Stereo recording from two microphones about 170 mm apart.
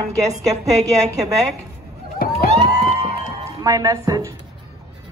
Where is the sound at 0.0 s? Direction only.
20° right (ahead or behind).